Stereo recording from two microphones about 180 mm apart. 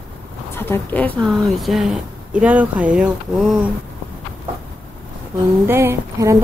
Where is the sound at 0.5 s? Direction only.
10° left (ahead or behind); by 3.7 s 5° right (ahead or behind).